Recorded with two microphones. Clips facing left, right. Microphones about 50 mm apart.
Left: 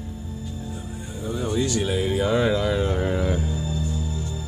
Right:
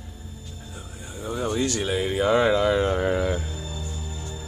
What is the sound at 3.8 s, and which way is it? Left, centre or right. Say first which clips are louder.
Music: left 7 dB; centre.